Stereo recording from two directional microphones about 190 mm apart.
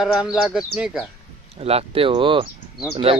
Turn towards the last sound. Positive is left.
turn(degrees=-30)  # may be behind; listen again after turning